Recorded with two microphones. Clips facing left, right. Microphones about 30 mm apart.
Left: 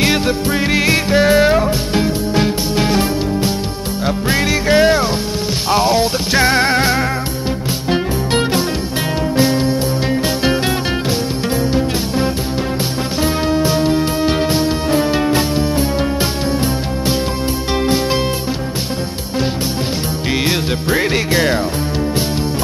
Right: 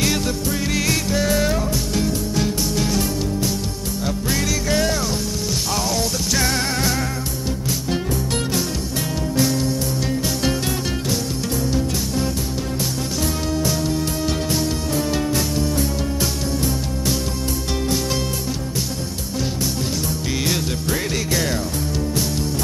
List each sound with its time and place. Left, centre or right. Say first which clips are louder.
0.0 s music: left 6 dB; left
13.2 s music: left 8 dB; left
20.4 s music: left 5 dB; left